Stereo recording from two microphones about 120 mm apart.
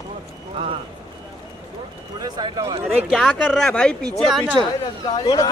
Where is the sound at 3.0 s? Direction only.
5° right (ahead or behind).